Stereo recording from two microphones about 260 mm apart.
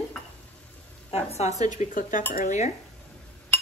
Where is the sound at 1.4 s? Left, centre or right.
Left.